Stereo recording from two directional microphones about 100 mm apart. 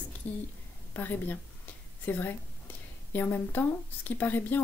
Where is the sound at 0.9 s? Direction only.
20° left (ahead or behind).